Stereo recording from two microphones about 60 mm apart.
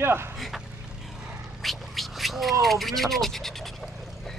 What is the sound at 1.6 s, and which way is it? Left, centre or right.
Speech, centre.